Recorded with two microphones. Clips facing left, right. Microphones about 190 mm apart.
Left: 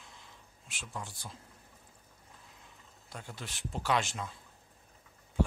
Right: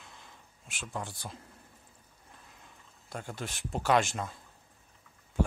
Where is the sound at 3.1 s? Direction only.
50° right (ahead or behind).